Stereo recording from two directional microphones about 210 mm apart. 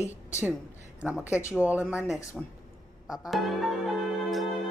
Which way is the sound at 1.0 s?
5° right (ahead or behind).